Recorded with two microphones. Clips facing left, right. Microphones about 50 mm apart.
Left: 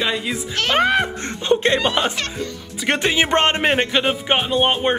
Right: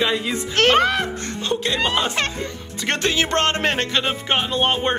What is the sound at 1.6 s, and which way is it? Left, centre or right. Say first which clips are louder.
Speech: left 3 dB; left.